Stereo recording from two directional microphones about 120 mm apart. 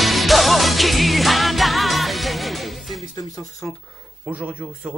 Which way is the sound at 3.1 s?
30° left (ahead or behind).